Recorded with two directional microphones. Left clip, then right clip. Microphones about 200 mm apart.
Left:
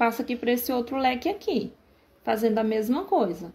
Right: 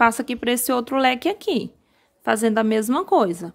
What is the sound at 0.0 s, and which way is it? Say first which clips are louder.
Speech: right 6 dB; 35° right (ahead or behind).